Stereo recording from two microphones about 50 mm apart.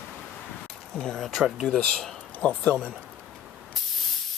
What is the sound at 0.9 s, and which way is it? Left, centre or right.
Speech, centre.